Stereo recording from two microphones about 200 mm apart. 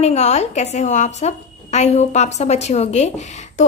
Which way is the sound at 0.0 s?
35° left (ahead or behind).